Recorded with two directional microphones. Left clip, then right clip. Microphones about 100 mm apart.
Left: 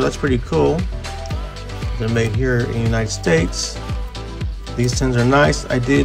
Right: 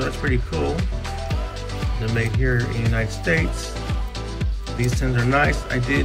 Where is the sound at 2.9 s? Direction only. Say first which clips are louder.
Left 4 dB; 25° left (ahead or behind).